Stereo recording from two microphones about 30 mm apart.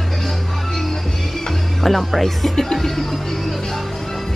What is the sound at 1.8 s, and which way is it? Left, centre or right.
Speech, centre.